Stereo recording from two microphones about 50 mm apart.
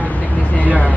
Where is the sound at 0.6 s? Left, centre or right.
Right.